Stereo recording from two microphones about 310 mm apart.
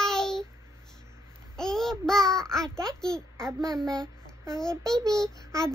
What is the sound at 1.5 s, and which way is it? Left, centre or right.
Babbling, centre.